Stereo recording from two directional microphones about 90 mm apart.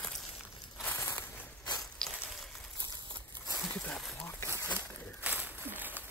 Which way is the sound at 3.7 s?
10° left (ahead or behind).